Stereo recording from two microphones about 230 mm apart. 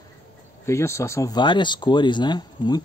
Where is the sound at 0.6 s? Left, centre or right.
Centre.